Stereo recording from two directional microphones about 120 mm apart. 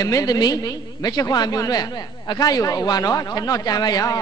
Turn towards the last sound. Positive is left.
turn(degrees=30)  # may be behind; listen again after turning